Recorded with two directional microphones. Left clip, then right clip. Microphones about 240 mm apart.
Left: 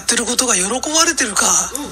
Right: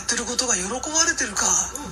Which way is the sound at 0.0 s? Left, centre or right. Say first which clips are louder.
Left 7 dB; left.